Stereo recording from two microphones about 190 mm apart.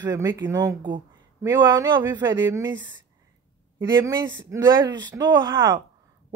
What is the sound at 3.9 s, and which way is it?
Speech, 25° right (ahead or behind).